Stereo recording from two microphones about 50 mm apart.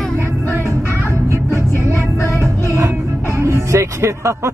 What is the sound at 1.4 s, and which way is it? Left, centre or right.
Music, left.